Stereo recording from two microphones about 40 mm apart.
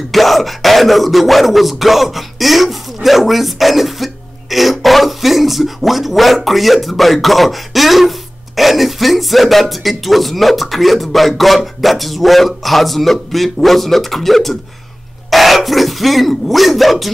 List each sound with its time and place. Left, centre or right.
0.1 s speech: centre